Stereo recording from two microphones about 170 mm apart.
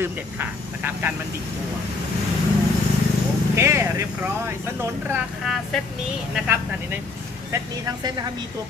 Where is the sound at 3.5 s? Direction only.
15° right (ahead or behind).